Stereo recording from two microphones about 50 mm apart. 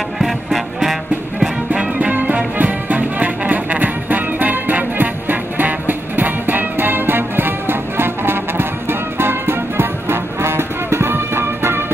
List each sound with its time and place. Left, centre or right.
0.2 s music: centre
1.7 s music: right